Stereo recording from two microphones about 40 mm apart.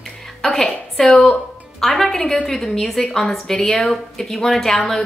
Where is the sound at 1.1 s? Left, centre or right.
Left.